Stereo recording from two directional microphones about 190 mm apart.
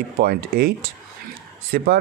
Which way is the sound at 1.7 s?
55° right (ahead or behind).